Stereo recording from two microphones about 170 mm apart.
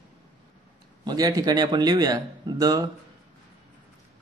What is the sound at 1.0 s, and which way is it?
Speech, 20° right (ahead or behind).